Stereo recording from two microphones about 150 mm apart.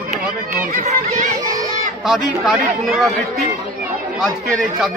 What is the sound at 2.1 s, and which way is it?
A man's voice, 5° right (ahead or behind).